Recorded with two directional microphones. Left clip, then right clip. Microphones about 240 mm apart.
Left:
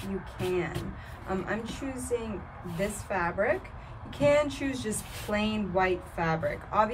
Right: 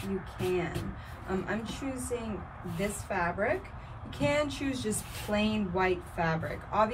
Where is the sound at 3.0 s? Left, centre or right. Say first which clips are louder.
Left 2 dB; left.